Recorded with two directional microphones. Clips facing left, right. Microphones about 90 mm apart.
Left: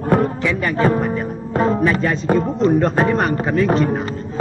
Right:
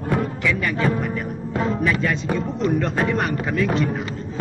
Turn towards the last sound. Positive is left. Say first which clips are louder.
# left 5 dB
turn(degrees=40)  # may be behind; listen again after turning